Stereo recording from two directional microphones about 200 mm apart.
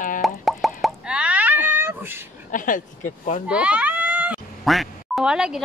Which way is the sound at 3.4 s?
5° right (ahead or behind).